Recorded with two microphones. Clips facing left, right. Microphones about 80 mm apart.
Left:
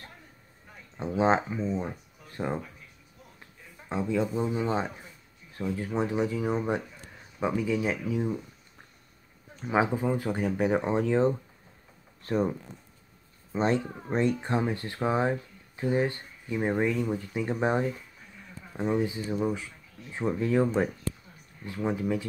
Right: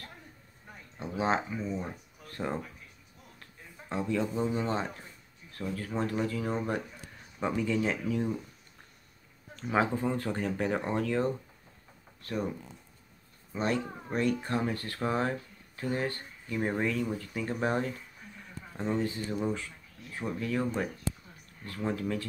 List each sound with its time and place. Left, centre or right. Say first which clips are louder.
0.9 s speech: left 5 dB; left
3.9 s speech: left 3 dB; centre
9.6 s speech: left 2 dB; centre; by 12.4 s left
13.5 s speech: left 4 dB; left
20.2 s speech: left 7 dB; left